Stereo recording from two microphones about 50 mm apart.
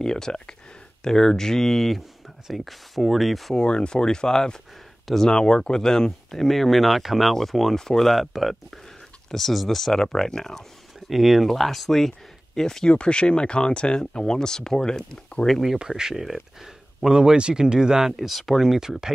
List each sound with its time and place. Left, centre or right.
0.0 s speech: centre
3.5 s speech: centre
11.1 s speech: centre
16.0 s speech: centre